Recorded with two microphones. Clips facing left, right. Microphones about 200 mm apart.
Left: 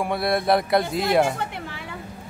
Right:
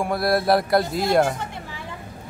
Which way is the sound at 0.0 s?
Centre (ahead or behind).